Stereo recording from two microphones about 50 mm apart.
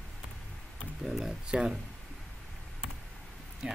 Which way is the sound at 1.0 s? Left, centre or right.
Centre.